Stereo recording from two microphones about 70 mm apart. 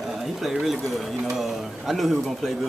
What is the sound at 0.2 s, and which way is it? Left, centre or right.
A man's voice, centre.